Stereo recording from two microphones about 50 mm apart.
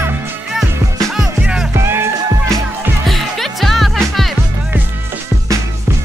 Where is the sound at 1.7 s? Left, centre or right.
Right.